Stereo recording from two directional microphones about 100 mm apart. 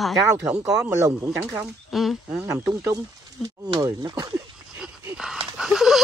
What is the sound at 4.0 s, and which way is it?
Speech, 40° right (ahead or behind).